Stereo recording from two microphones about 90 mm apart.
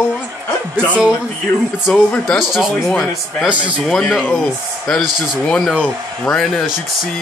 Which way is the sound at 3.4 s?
15° right (ahead or behind).